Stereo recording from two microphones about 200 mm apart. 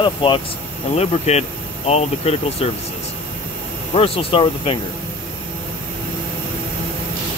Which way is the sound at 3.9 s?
30° left (ahead or behind).